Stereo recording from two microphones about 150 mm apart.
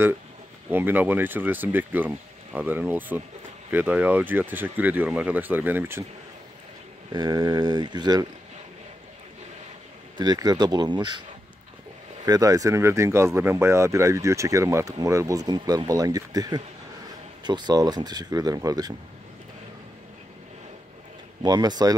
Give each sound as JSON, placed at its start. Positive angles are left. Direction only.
{"t": 0.7, "sound": "speech", "side_deg": -15}
{"t": 7.1, "sound": "speech", "side_deg": -25}
{"t": 10.1, "sound": "speech", "side_deg": -25}
{"t": 12.3, "sound": "speech", "side_deg": -25}
{"t": 21.4, "sound": "speech", "side_deg": -25}